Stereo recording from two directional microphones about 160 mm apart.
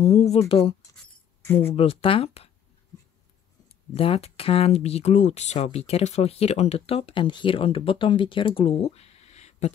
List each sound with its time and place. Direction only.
0.0 s speech: 40° left (ahead or behind)
1.4 s speech: 15° left (ahead or behind)
1.7 s speech: 35° left (ahead or behind)
3.9 s speech: 35° left (ahead or behind)